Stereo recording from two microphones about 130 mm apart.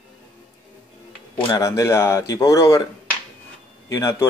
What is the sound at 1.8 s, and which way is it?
Speech, 25° left (ahead or behind).